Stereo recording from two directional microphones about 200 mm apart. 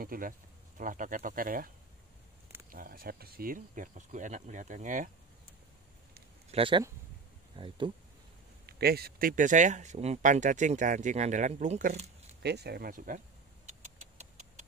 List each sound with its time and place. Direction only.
0.0 s speech: 45° right (ahead or behind)
2.7 s speech: 45° right (ahead or behind)
6.5 s speech: 25° right (ahead or behind)
8.6 s speech: 50° right (ahead or behind); by 12.4 s 35° right (ahead or behind)
12.4 s speech: 55° right (ahead or behind)
13.7 s a sound: 35° right (ahead or behind)